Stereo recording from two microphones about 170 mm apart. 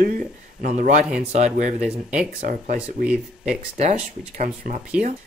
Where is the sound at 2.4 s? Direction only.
55° right (ahead or behind).